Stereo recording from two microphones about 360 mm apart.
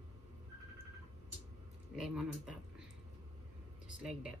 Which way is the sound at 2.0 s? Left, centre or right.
Centre.